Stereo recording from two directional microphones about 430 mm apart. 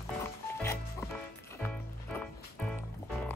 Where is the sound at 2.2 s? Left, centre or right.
Centre.